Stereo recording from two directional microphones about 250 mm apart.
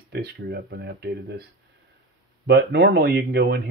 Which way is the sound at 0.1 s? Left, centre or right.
Right.